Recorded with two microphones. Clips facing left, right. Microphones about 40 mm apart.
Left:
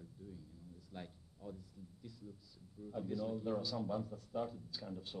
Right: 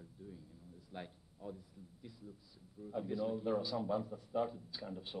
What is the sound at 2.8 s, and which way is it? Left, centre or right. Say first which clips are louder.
A man's voice: right 3 dB; centre.